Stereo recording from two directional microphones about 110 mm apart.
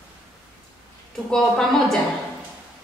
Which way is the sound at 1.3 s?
5° left (ahead or behind).